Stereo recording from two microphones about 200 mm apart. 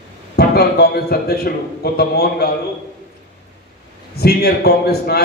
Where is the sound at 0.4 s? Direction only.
50° left (ahead or behind).